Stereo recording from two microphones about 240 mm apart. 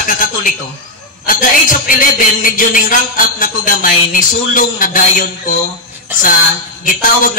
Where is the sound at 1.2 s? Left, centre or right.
Left.